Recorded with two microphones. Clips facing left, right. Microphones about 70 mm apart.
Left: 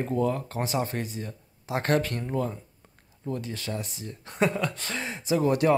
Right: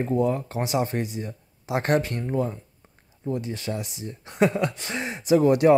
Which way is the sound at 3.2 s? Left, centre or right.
Centre.